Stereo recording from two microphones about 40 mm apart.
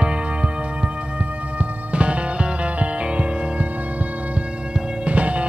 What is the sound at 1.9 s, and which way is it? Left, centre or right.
Music, right.